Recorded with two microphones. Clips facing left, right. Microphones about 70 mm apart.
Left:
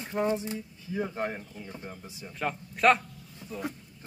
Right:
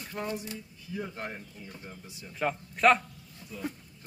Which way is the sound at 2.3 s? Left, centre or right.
Centre.